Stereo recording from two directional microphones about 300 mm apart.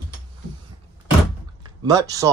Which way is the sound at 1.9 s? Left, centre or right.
Centre.